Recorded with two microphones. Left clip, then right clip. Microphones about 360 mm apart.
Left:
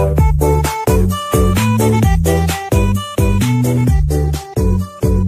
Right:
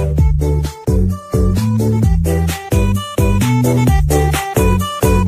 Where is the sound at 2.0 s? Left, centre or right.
Centre.